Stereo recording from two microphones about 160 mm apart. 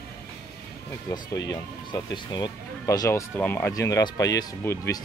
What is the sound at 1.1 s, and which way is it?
Speech, 25° left (ahead or behind).